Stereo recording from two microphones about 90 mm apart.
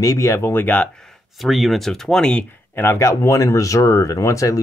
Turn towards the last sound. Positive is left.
turn(degrees=35)  # may be behind; listen again after turning